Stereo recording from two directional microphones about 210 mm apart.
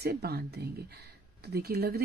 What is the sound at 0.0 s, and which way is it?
Speech, 50° right (ahead or behind).